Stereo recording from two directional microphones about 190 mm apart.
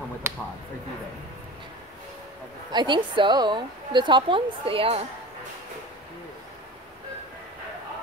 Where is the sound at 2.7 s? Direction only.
25° right (ahead or behind).